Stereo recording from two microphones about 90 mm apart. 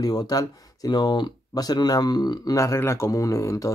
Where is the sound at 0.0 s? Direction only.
50° left (ahead or behind).